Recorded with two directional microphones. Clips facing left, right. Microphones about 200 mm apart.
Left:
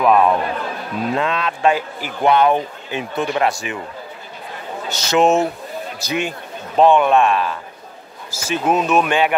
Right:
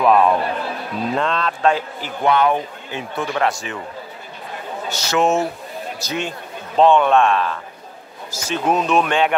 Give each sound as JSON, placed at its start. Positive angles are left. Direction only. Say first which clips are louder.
{"t": 0.0, "sound": "speech", "louder": "even", "side_deg": 0}
{"t": 4.8, "sound": "speech", "louder": "left 3 dB", "side_deg": 20}